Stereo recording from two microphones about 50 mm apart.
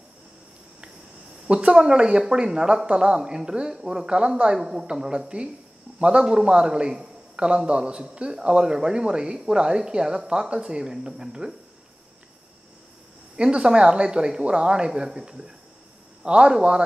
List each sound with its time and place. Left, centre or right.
1.5 s speech: centre
13.4 s speech: centre